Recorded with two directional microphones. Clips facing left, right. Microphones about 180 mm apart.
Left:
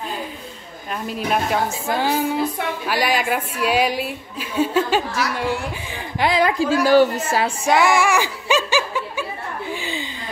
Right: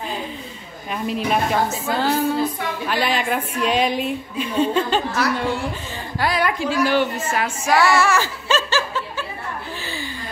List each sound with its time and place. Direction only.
0.9 s a woman's voice: centre (ahead or behind)
1.9 s a woman's voice: 15° left (ahead or behind)
6.1 s a woman's voice: 25° left (ahead or behind)
6.6 s a woman's voice: 40° left (ahead or behind)
7.7 s speech: 15° left (ahead or behind)
9.7 s chuckle: 15° left (ahead or behind)